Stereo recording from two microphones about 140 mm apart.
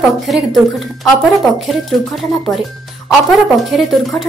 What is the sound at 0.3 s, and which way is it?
A woman's voice, centre (ahead or behind).